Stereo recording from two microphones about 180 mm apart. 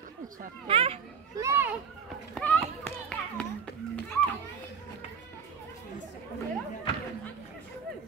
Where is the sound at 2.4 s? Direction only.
5° left (ahead or behind).